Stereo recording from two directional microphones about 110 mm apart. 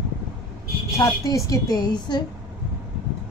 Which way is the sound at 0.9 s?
30° left (ahead or behind).